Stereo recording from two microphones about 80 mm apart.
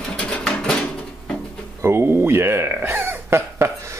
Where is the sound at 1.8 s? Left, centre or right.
Right.